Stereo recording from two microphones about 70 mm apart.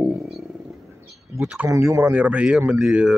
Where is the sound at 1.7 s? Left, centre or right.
Right.